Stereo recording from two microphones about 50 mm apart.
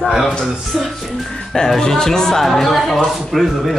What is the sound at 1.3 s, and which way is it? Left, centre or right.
A woman's voice, centre.